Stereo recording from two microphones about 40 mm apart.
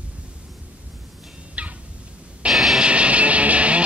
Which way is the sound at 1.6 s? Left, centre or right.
Right.